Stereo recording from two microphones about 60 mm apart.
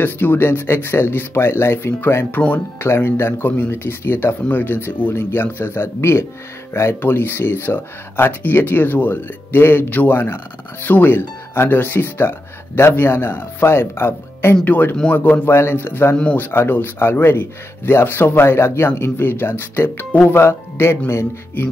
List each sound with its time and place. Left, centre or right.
0.0 s speech: left
14.6 s speech: left
15.5 s speech: left